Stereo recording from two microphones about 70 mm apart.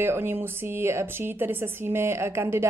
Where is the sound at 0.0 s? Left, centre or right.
Right.